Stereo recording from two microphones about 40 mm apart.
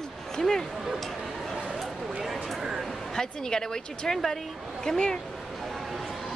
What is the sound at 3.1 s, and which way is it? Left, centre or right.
A woman's voice, centre.